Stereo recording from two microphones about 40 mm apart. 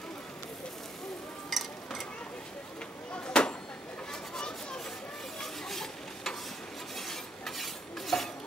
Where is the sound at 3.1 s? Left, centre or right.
Left; by 6.3 s centre.